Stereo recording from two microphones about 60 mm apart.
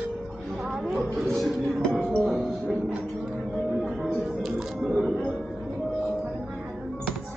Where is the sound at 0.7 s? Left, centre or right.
Centre.